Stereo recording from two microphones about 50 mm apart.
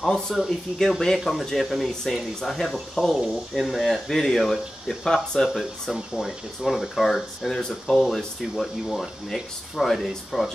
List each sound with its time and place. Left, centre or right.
0.0 s speech: centre